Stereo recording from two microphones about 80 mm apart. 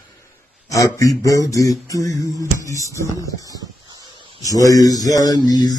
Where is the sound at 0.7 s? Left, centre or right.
Left.